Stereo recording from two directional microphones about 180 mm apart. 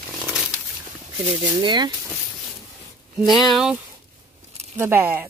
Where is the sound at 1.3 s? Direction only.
25° right (ahead or behind).